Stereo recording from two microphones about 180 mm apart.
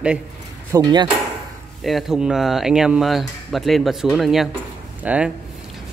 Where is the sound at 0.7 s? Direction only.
20° right (ahead or behind).